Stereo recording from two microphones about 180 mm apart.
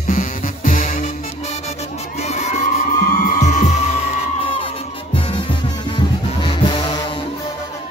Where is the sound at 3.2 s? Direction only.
45° left (ahead or behind).